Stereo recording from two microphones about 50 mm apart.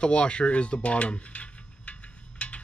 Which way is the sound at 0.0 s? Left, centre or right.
Left.